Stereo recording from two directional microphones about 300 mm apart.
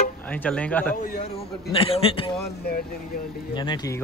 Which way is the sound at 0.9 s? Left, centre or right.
Left.